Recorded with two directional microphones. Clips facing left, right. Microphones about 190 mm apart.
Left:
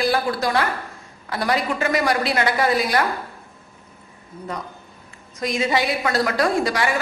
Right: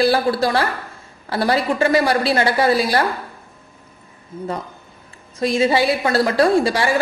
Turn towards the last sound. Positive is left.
turn(degrees=-30)  # may be behind; listen again after turning